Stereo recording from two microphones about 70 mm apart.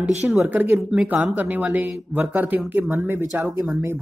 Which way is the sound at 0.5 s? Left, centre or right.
Right.